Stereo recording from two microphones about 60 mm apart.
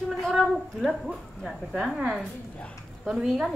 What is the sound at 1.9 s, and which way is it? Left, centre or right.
A woman's voice, centre.